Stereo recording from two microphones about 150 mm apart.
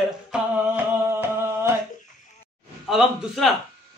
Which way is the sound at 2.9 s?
Centre (ahead or behind).